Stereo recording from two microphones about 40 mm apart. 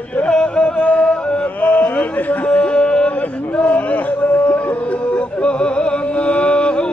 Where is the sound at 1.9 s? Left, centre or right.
Left.